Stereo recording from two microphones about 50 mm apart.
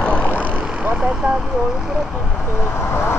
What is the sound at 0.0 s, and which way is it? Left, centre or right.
Vehicle, left.